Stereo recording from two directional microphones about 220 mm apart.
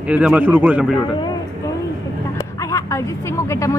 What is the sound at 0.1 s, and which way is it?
Speech, 5° right (ahead or behind).